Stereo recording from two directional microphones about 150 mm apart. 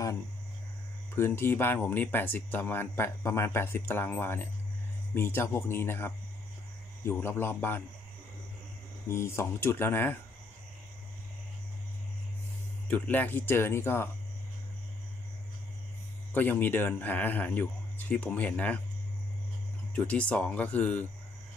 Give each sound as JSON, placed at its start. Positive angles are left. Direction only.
{"t": 1.1, "sound": "speech", "side_deg": 15}
{"t": 9.1, "sound": "speech", "side_deg": 20}
{"t": 12.8, "sound": "speech", "side_deg": 10}
{"t": 16.3, "sound": "speech", "side_deg": 10}
{"t": 19.9, "sound": "speech", "side_deg": 10}